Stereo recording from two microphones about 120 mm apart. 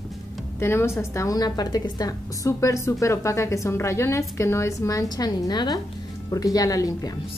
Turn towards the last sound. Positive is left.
turn(degrees=30)  # may be behind; listen again after turning